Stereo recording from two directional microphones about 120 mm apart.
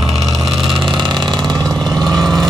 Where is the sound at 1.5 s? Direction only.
5° left (ahead or behind).